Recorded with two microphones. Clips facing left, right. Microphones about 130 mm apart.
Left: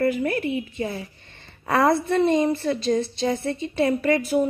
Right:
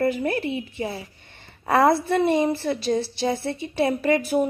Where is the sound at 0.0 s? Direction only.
30° right (ahead or behind).